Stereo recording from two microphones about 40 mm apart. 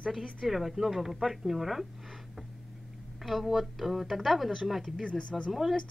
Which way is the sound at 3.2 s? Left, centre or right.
Centre.